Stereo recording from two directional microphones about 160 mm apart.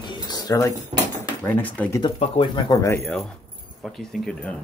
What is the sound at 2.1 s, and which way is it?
Speech, 35° left (ahead or behind).